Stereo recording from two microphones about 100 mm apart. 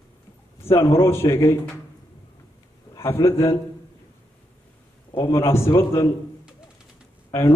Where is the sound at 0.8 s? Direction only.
30° left (ahead or behind).